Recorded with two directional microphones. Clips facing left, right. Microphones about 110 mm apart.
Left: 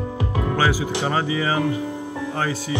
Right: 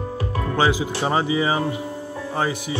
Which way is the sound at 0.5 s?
20° right (ahead or behind).